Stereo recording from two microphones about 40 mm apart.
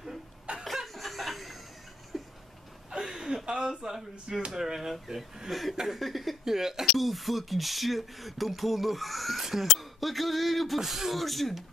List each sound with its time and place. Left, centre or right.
0.7 s chuckle: centre
2.1 s a sound: centre
3.4 s speech: centre
6.4 s speech: centre